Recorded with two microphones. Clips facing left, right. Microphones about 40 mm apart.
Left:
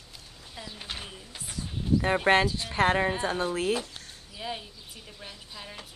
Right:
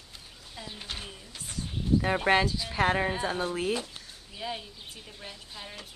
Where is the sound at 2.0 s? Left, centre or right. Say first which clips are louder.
Left 3 dB; centre.